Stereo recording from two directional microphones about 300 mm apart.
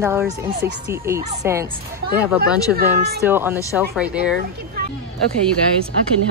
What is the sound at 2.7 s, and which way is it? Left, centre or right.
Speech, right.